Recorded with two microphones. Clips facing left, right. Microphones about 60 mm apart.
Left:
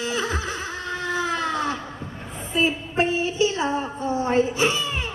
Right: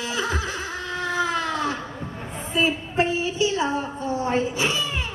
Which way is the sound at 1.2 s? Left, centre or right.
Left.